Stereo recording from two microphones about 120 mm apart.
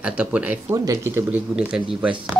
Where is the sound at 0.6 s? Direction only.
25° right (ahead or behind).